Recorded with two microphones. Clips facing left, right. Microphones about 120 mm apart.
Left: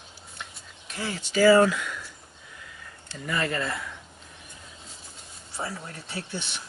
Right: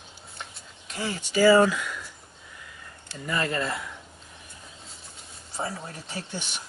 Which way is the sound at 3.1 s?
10° right (ahead or behind).